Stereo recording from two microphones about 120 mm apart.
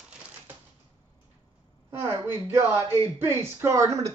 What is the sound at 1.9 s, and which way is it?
Speech, 20° right (ahead or behind).